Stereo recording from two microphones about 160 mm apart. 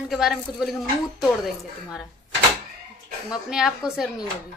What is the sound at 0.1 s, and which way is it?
Speech, centre (ahead or behind).